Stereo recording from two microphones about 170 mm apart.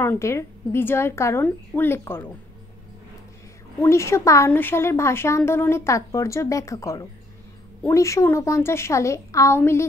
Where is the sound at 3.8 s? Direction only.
15° left (ahead or behind).